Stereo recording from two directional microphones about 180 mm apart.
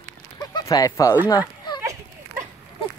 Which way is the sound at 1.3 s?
20° left (ahead or behind).